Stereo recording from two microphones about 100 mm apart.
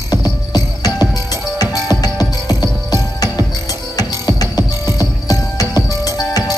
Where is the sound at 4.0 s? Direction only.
40° left (ahead or behind).